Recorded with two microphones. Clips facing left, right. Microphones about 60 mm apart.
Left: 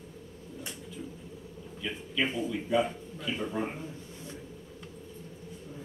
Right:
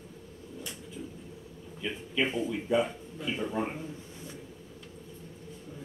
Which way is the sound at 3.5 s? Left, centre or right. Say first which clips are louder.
Right 1 dB; centre.